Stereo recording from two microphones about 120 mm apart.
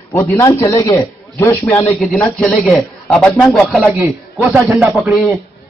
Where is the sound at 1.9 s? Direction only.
5° left (ahead or behind); by 4.9 s 10° right (ahead or behind).